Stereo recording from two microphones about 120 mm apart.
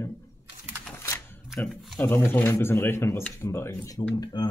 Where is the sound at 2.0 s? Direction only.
20° left (ahead or behind).